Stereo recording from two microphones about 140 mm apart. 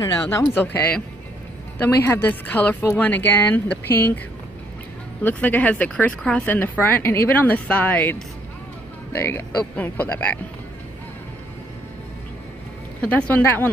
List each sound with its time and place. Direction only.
0.0 s speech: 25° left (ahead or behind)
5.2 s speech: 10° left (ahead or behind)
13.0 s speech: 10° left (ahead or behind)